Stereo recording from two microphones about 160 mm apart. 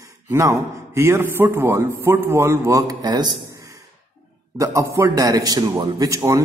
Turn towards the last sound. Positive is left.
turn(degrees=-20)  # may be behind; listen again after turning